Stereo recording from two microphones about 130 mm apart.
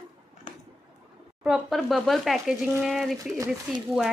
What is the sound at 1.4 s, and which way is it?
Speech, centre (ahead or behind).